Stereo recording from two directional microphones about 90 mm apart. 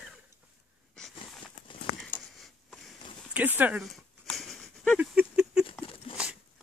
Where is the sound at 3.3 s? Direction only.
20° right (ahead or behind).